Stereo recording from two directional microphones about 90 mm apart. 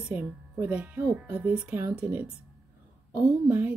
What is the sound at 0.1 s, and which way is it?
Music, 15° right (ahead or behind).